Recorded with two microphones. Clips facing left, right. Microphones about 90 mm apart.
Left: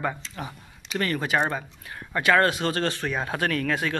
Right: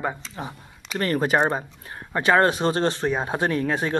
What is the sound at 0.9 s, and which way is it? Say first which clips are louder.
Speech: right 4 dB; 40° right (ahead or behind).